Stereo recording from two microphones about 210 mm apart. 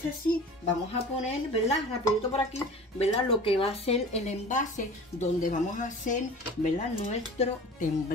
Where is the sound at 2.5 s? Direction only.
30° left (ahead or behind).